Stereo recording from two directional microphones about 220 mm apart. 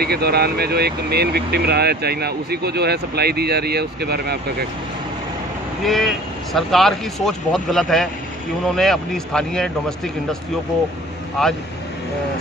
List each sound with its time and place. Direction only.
0.0 s speech: 45° right (ahead or behind)
5.9 s speech: centre (ahead or behind)
11.4 s speech: centre (ahead or behind)